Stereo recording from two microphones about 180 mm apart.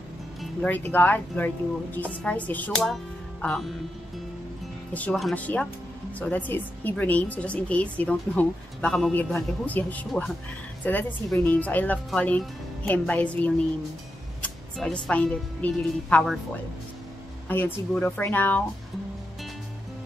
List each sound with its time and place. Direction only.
0.4 s speech: 5° left (ahead or behind)
4.9 s a woman's voice: 5° left (ahead or behind)
17.5 s speech: 10° left (ahead or behind)